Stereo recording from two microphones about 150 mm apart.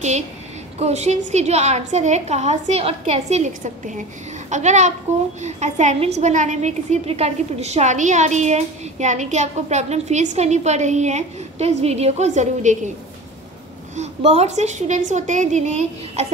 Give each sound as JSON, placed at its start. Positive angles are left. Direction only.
{"t": 0.7, "sound": "a woman's voice", "side_deg": -45}
{"t": 13.9, "sound": "a woman's voice", "side_deg": -45}